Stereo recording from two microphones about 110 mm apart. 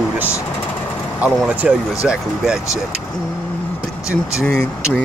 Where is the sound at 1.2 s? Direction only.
10° right (ahead or behind).